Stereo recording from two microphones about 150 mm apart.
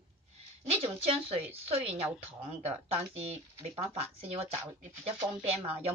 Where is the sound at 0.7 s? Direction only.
40° right (ahead or behind).